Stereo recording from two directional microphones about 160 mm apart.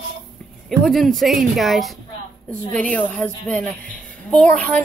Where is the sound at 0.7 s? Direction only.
Centre (ahead or behind).